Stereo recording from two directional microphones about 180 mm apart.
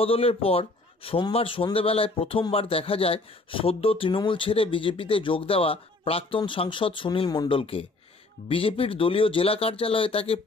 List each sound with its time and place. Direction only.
0.0 s speech: 30° left (ahead or behind)